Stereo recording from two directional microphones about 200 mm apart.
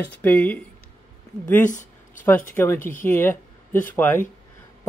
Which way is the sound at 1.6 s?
40° left (ahead or behind).